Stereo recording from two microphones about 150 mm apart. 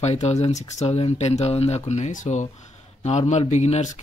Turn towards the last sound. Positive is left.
turn(degrees=50)  # may be behind; listen again after turning